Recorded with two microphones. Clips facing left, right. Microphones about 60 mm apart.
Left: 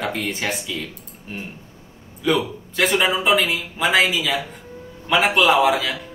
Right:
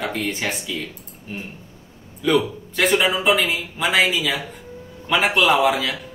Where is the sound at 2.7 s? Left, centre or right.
Centre.